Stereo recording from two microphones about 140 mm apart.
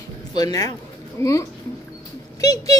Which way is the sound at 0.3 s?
30° left (ahead or behind).